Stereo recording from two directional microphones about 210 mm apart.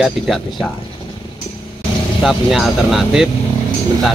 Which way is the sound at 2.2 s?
Centre (ahead or behind).